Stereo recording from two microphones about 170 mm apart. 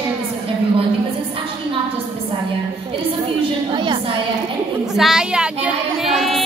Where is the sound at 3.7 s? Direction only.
30° right (ahead or behind).